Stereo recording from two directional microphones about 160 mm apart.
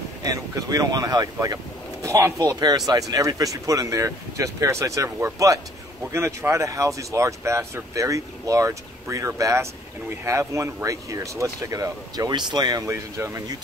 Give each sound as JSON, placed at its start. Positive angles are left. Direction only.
{"t": 0.2, "sound": "speech", "side_deg": -20}